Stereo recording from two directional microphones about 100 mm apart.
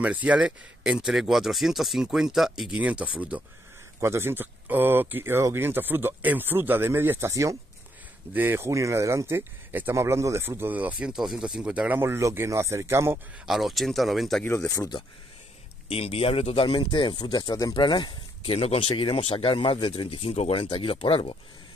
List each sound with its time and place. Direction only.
0.0 s speech: 15° right (ahead or behind)
4.0 s speech: 25° right (ahead or behind)
8.3 s speech: 20° right (ahead or behind)
12.0 s speech: 30° right (ahead or behind)
13.5 s speech: centre (ahead or behind)
14.4 s speech: 20° left (ahead or behind)
15.9 s speech: 80° left; by 17.7 s 40° left (ahead or behind)
17.7 s speech: 50° left (ahead or behind)
18.4 s speech: 80° left